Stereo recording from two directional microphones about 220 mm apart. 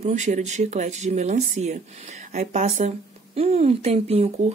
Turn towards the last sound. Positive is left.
turn(degrees=-30)  # may be behind; listen again after turning